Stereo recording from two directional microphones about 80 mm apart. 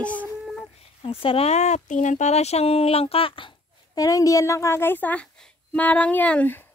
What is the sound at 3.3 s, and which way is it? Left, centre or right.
Speech, left.